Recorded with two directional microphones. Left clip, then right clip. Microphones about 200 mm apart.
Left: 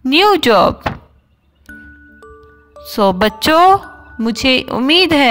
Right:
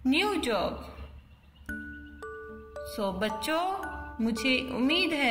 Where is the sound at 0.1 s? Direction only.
45° left (ahead or behind).